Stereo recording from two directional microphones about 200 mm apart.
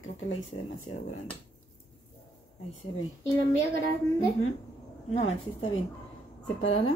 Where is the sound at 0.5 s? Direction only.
30° left (ahead or behind).